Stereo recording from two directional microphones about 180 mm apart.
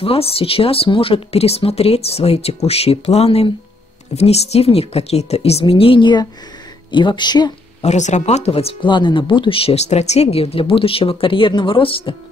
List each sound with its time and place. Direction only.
0.0 s speech: 30° left (ahead or behind)
7.8 s speech: 40° left (ahead or behind)